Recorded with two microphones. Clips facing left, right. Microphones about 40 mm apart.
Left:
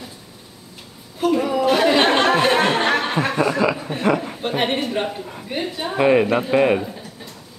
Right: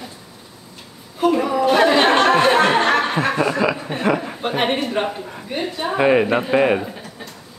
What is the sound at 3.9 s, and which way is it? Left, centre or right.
Speech, centre.